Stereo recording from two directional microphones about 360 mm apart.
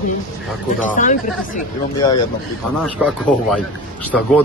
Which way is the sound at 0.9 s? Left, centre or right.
Left.